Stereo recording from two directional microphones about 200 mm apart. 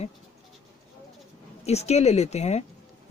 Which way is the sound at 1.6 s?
30° left (ahead or behind).